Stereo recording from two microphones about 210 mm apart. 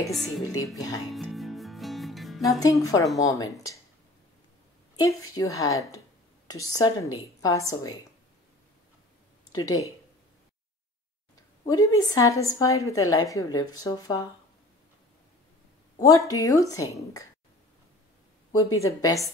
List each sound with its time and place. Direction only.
0.4 s a woman's voice: 15° left (ahead or behind)
1.1 s music: centre (ahead or behind)
2.8 s a woman's voice: 15° left (ahead or behind)
4.9 s a woman's voice: 15° left (ahead or behind)
9.5 s a woman's voice: 15° left (ahead or behind)
11.6 s a woman's voice: 15° left (ahead or behind)
16.1 s a woman's voice: 15° left (ahead or behind)
18.5 s a woman's voice: 15° left (ahead or behind)